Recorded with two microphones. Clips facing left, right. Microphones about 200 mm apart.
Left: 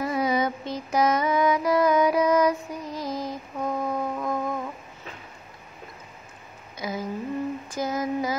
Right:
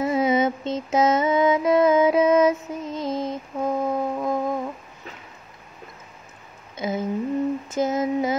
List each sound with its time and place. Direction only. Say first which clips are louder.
0.0 s mantra: right 4 dB; 25° right (ahead or behind)
6.8 s a sound: right 5 dB; 25° right (ahead or behind)
7.7 s female singing: right 4 dB; 25° right (ahead or behind)